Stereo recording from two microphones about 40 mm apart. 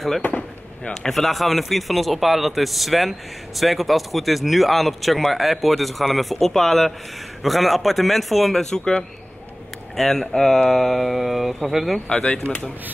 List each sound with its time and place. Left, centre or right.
0.3 s speech: left
1.0 s a man's voice: centre
12.1 s speech: left